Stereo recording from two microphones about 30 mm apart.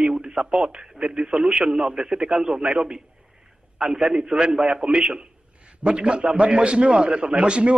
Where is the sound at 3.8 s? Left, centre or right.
Centre.